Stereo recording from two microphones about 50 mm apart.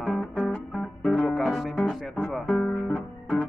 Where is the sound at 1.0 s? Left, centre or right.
Left.